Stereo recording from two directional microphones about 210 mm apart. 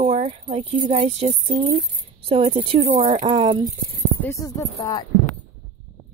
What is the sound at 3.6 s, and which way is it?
Speech, 10° left (ahead or behind).